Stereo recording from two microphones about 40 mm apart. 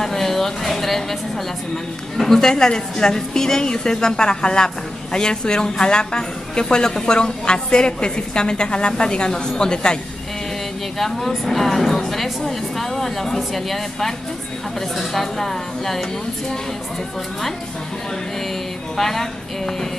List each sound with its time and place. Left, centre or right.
0.0 s a sound: centre
2.1 s a woman's voice: centre
11.0 s a woman's voice: centre
18.9 s a woman's voice: centre